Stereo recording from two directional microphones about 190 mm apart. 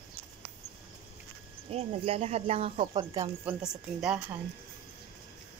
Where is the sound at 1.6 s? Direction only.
30° right (ahead or behind).